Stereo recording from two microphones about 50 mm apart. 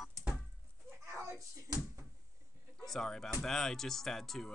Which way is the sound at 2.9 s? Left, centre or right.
Centre.